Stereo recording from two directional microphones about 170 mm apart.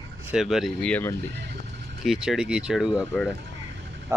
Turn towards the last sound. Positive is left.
turn(degrees=-5)  # may be behind; listen again after turning